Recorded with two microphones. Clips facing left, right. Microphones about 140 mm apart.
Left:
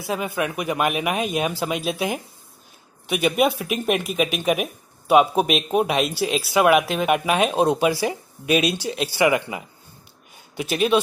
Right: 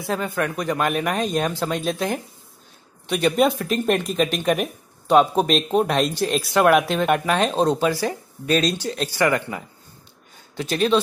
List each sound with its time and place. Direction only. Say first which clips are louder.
0.0 s speech: right 1 dB; 10° left (ahead or behind)